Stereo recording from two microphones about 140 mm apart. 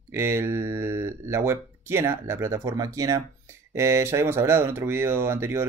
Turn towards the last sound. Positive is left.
turn(degrees=-20)  # may be behind; listen again after turning